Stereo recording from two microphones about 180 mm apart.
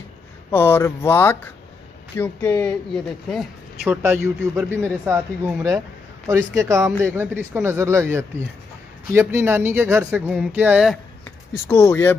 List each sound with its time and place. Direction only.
0.5 s speech: 10° left (ahead or behind)
4.6 s speech: 10° right (ahead or behind)
11.6 s speech: 15° left (ahead or behind)